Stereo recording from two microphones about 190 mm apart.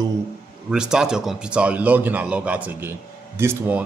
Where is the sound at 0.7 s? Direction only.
5° right (ahead or behind).